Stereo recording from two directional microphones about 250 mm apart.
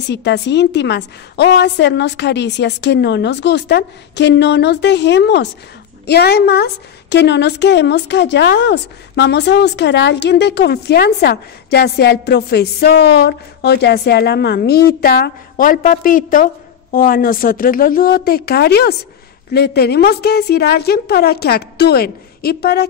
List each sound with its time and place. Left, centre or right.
0.0 s a woman's voice: left